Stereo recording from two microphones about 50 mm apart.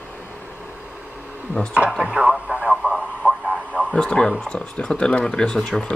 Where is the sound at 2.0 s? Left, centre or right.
Right.